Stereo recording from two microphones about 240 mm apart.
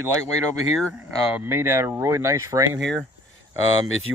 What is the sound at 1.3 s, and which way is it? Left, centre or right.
Speech, centre.